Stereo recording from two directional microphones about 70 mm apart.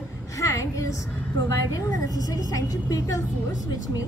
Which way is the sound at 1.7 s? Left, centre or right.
Left.